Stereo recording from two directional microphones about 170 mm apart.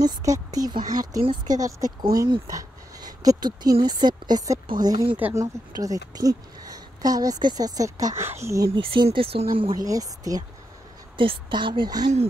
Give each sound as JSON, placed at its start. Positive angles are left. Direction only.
{"t": 0.0, "sound": "a woman's voice", "side_deg": -20}
{"t": 9.8, "sound": "speech", "side_deg": -20}